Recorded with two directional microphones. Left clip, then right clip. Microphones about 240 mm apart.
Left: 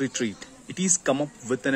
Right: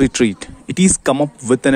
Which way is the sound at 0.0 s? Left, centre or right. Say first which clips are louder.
Right 13 dB; right.